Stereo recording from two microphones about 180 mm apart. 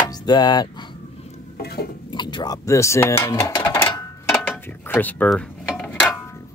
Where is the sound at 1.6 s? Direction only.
60° left (ahead or behind).